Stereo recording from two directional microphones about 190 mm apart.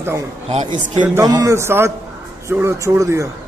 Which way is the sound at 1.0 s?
15° right (ahead or behind).